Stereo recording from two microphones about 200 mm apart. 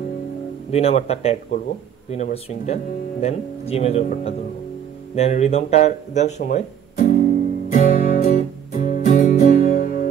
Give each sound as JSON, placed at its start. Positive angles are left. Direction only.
{"t": 0.7, "sound": "speech", "side_deg": 30}
{"t": 7.0, "sound": "music", "side_deg": 45}